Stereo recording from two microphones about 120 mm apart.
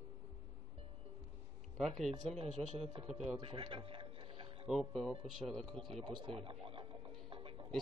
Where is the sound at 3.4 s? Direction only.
45° right (ahead or behind).